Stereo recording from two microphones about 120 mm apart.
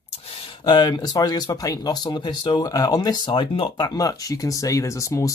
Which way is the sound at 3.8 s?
30° left (ahead or behind).